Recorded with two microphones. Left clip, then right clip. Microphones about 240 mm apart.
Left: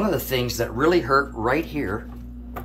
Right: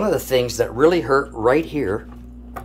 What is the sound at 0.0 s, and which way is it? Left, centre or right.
Speech, right.